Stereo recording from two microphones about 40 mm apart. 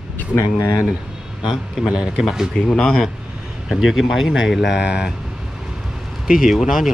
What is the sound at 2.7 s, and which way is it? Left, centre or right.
Speech, left.